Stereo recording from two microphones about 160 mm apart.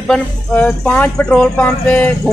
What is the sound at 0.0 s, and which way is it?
Speech, 5° left (ahead or behind).